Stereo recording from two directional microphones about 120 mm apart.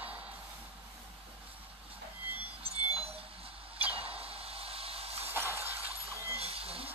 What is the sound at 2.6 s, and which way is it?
Music, 55° right (ahead or behind).